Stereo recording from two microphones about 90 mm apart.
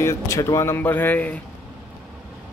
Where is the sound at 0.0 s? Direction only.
35° left (ahead or behind); by 1.4 s 15° left (ahead or behind).